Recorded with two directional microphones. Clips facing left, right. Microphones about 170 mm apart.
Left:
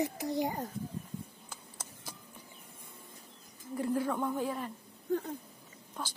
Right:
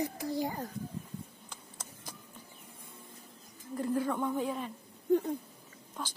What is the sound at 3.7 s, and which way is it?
A woman's voice, 5° left (ahead or behind).